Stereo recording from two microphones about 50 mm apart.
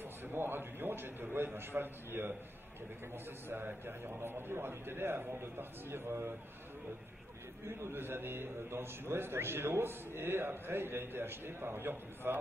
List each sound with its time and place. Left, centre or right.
0.0 s a man's voice: right
7.6 s a man's voice: right